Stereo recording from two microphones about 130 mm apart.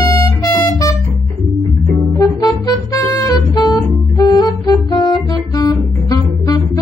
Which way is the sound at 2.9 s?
30° left (ahead or behind).